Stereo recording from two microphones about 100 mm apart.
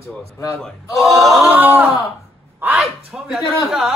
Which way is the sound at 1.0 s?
Centre (ahead or behind).